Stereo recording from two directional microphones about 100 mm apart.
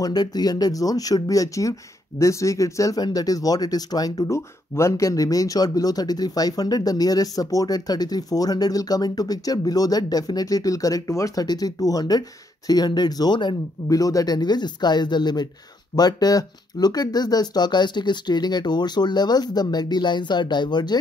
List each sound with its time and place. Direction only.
0.0 s speech: 40° left (ahead or behind)
4.2 s speech: 30° left (ahead or behind); by 13.6 s 50° left (ahead or behind)
13.8 s speech: 35° left (ahead or behind)